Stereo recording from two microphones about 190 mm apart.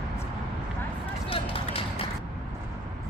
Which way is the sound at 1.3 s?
30° left (ahead or behind).